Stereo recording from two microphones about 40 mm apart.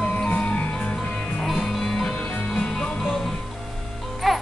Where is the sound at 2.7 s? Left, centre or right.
Centre.